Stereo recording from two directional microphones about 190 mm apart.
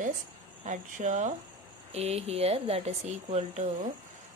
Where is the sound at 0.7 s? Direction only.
40° right (ahead or behind).